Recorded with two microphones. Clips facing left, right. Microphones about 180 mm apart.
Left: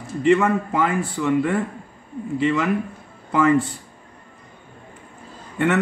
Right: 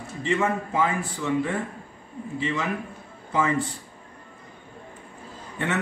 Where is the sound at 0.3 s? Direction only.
60° left (ahead or behind).